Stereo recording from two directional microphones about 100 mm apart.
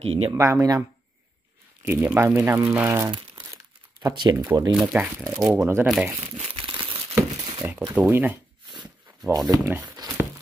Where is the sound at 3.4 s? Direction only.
30° right (ahead or behind).